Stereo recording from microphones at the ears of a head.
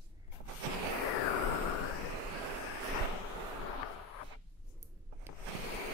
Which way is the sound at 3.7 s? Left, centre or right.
Left.